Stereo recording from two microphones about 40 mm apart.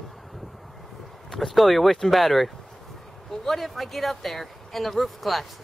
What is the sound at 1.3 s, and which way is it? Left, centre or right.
Speech, centre.